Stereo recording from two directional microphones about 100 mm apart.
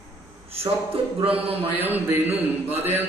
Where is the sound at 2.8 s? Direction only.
20° right (ahead or behind).